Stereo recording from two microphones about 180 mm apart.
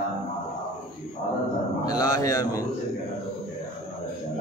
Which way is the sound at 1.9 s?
20° left (ahead or behind).